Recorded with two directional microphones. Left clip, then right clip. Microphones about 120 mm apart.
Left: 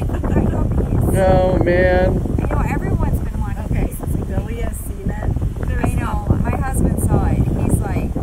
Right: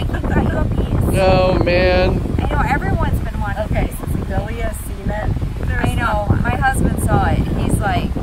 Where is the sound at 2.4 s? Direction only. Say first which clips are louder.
Right 4 dB; 25° left (ahead or behind).